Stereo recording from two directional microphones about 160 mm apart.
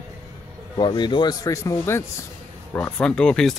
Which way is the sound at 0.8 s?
30° left (ahead or behind).